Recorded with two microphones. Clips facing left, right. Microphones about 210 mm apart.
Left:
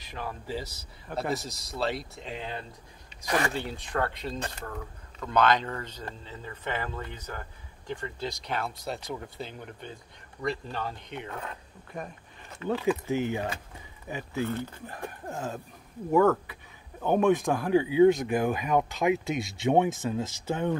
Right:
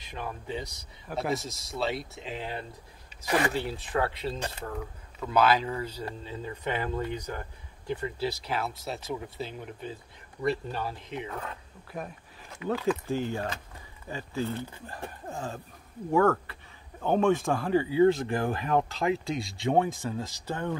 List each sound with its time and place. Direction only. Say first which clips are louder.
0.5 s speech: even; 5° left (ahead or behind)
3.5 s speech: right 2 dB; 5° right (ahead or behind)
13.1 s speech: left 2 dB; 15° left (ahead or behind)
17.3 s speech: left 2 dB; 15° left (ahead or behind)